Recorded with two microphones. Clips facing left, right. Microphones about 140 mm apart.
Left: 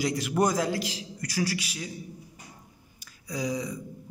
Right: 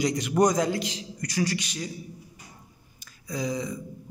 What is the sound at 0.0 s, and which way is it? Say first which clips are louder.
A man's voice: right 3 dB; 5° left (ahead or behind).